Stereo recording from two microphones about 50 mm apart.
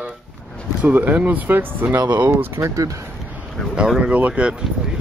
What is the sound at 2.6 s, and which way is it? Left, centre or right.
Speech, right.